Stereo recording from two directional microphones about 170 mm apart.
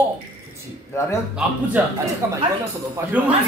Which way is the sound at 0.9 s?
15° left (ahead or behind).